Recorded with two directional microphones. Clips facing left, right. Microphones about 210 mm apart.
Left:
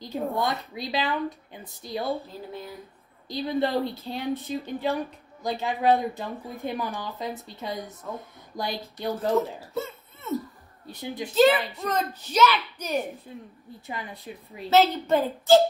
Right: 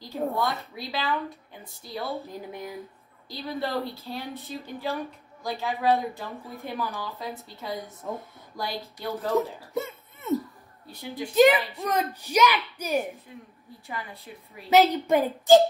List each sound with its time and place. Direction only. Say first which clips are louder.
0.3 s speech: left 1 dB; 15° left (ahead or behind)
2.2 s a child's voice: right 1 dB; 15° right (ahead or behind)
3.3 s a child's voice: left 5 dB; 20° left (ahead or behind)
9.8 s a child's voice: right 1 dB; 15° right (ahead or behind)
10.3 s a sound: right 3 dB; 15° right (ahead or behind)
10.9 s a child's voice: left 2 dB; 20° left (ahead or behind)
11.3 s a child's voice: right 1 dB; 15° right (ahead or behind)
13.3 s a woman's voice: left 3 dB; 30° left (ahead or behind)
13.8 s speech: left 2 dB; 15° left (ahead or behind)
14.7 s a child's voice: right 1 dB; 15° right (ahead or behind)